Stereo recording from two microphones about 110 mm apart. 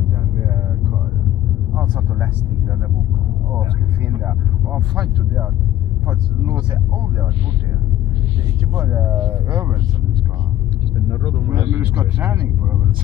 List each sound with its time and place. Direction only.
4.7 s speech: 10° right (ahead or behind)
8.7 s speech: 15° right (ahead or behind)
9.2 s speech: 30° right (ahead or behind)
11.1 s speech: 40° left (ahead or behind)
11.5 s speech: 20° right (ahead or behind)